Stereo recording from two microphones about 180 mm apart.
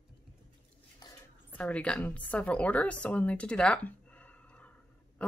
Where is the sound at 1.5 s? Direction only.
5° left (ahead or behind).